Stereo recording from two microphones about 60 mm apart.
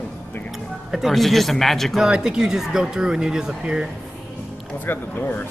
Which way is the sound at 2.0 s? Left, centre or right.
Centre.